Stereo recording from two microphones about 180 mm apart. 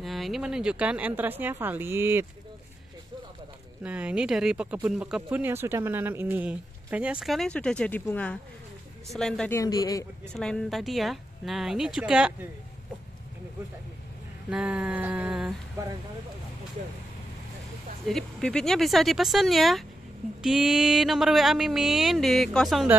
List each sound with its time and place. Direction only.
0.0 s speech: centre (ahead or behind)
3.8 s speech: 5° right (ahead or behind)
9.5 s a man's voice: 20° left (ahead or behind)
10.3 s speech: centre (ahead or behind)
14.5 s speech: 5° right (ahead or behind)
18.0 s speech: 5° left (ahead or behind)